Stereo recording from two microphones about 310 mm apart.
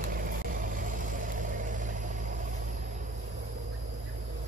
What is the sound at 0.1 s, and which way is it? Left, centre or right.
Vehicle, right.